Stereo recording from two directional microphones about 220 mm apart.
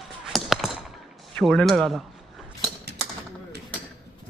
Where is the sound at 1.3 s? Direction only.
Centre (ahead or behind).